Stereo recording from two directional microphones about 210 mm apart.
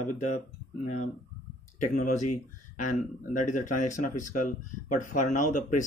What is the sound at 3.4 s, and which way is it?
Speech, 35° left (ahead or behind).